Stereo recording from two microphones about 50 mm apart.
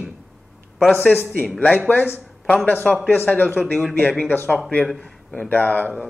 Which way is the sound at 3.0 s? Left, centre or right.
Left.